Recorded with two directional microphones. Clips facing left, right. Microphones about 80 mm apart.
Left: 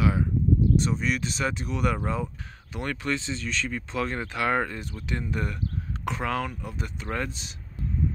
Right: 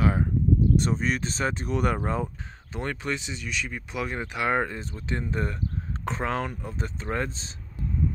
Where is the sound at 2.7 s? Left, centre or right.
Right.